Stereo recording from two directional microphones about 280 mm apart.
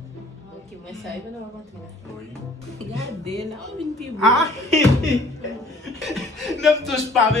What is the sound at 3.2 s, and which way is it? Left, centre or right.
Speech, centre.